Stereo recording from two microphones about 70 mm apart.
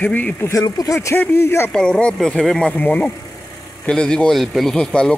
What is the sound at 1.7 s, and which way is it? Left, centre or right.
Speech, centre.